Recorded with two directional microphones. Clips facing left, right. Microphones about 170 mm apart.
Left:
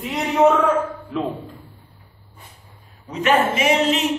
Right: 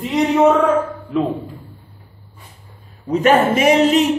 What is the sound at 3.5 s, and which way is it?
Speech, 45° right (ahead or behind).